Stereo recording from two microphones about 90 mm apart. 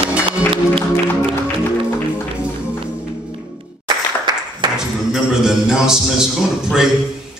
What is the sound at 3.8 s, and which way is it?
Applause, 55° right (ahead or behind).